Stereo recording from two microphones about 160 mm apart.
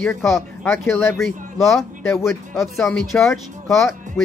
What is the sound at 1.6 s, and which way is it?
Speech, centre (ahead or behind).